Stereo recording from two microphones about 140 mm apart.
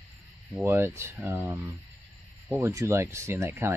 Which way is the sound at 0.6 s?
15° right (ahead or behind).